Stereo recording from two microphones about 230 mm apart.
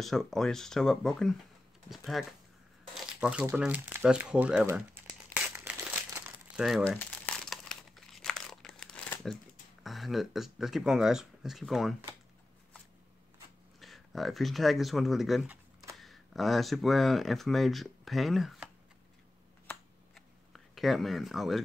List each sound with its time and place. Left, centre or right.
0.0 s speech: centre
2.9 s crumpling: centre
9.8 s speech: centre
13.7 s speech: centre
19.7 s a sound: centre